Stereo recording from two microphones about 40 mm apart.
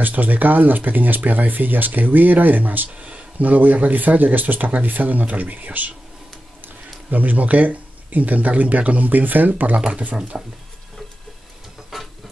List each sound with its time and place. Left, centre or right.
0.0 s speech: right
2.9 s speech: right
9.8 s speech: right